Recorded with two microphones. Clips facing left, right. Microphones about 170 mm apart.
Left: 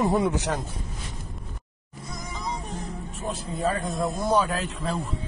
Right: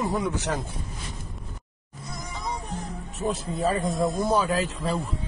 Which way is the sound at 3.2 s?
Centre (ahead or behind).